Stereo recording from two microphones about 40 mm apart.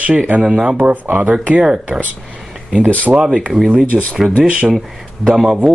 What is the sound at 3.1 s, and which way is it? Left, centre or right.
Speech, right.